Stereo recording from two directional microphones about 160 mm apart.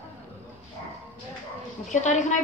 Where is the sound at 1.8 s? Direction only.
50° left (ahead or behind).